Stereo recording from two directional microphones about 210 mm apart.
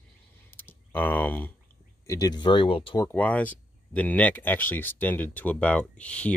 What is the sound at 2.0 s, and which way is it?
Speech, 15° left (ahead or behind).